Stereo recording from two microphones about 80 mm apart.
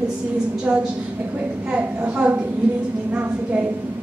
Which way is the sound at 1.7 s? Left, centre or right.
Centre.